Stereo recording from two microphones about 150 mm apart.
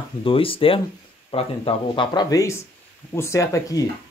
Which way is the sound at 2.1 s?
25° left (ahead or behind).